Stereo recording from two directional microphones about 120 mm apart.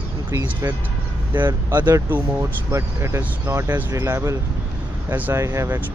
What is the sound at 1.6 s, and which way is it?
Speech, 25° right (ahead or behind).